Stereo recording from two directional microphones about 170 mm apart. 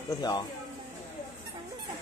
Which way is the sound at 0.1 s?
25° left (ahead or behind).